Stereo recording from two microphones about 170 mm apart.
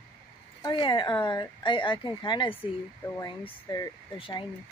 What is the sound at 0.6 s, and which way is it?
Speech, 25° left (ahead or behind).